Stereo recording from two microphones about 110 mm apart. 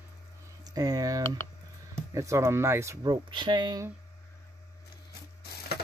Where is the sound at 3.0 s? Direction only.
40° right (ahead or behind).